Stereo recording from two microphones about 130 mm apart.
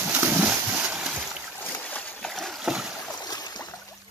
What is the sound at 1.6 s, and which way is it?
Boat, 15° left (ahead or behind).